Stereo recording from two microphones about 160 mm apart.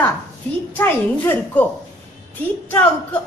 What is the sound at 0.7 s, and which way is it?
Speech, 15° left (ahead or behind).